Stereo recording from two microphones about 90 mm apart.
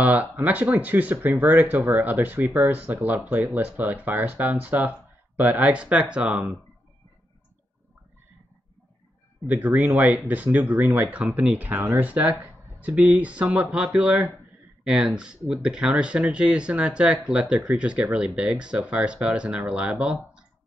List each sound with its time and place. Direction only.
0.0 s speech: 20° right (ahead or behind)
9.5 s speech: 20° right (ahead or behind)